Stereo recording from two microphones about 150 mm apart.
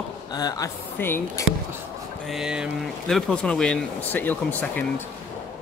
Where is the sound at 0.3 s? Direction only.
25° left (ahead or behind).